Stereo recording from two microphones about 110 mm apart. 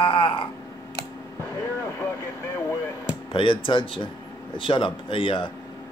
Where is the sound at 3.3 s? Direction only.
50° left (ahead or behind).